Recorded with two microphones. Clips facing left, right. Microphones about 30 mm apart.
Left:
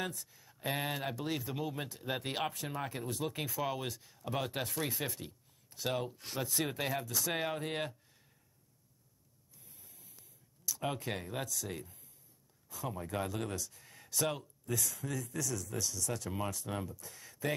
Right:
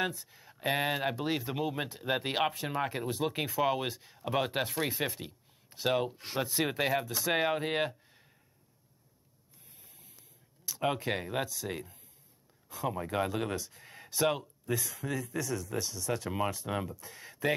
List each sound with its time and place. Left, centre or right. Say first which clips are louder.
0.0 s speech: right 6 dB; right
1.6 s speech: right 5 dB; centre
2.0 s speech: right 6 dB; right
10.6 s speech: right 6 dB; right